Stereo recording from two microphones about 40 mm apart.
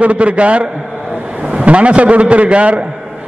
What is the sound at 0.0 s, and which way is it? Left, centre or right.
A man's voice, right.